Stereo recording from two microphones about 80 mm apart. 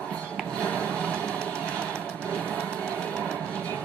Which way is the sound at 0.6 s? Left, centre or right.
Centre.